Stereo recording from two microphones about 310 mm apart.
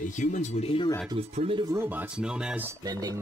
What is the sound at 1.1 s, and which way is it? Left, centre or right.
Speech, centre.